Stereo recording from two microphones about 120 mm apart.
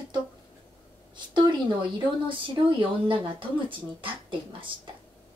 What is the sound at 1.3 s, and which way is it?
Speech, 40° right (ahead or behind).